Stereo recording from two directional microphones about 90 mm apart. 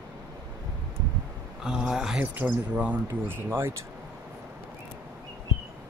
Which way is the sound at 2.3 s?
15° right (ahead or behind).